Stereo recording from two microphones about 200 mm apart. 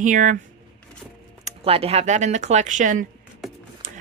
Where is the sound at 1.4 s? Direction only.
30° right (ahead or behind).